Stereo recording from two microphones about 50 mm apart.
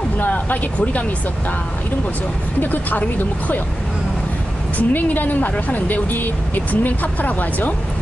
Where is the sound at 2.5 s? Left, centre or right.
Left.